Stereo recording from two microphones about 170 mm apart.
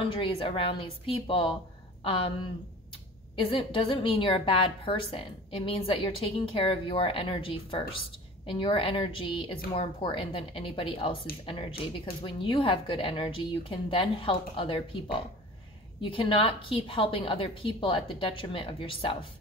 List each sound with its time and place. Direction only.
0.1 s a woman's voice: 30° left (ahead or behind)
3.3 s a woman's voice: 30° left (ahead or behind)
12.3 s a woman's voice: 30° left (ahead or behind)